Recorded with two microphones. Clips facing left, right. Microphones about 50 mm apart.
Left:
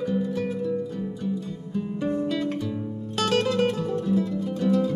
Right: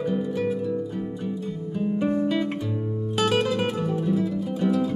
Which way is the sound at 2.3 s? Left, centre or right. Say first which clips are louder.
Right 2 dB; centre.